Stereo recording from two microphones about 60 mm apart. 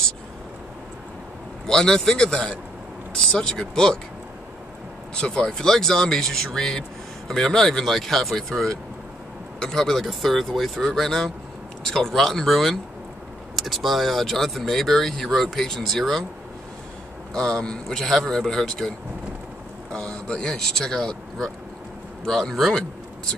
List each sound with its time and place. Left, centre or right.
1.7 s speech: centre
5.1 s speech: centre
17.3 s speech: centre